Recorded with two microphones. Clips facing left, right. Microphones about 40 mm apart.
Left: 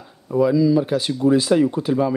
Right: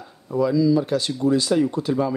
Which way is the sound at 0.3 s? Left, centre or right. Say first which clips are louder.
Left 2 dB; centre.